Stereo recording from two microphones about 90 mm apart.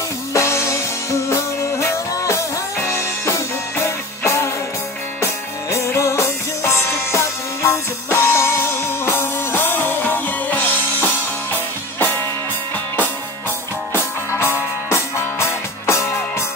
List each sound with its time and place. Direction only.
0.3 s music: 30° left (ahead or behind)
14.3 s music: 30° left (ahead or behind)